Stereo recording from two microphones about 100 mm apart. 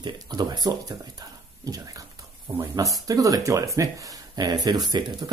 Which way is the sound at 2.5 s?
50° right (ahead or behind).